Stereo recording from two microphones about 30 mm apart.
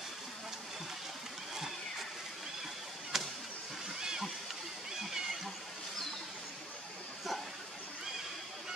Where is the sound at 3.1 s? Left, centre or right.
Centre.